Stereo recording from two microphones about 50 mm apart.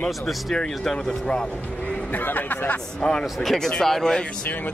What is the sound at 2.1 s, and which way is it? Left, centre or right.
Speech, left.